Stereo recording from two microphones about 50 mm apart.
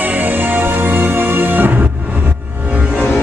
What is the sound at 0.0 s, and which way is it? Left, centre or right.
Music, right.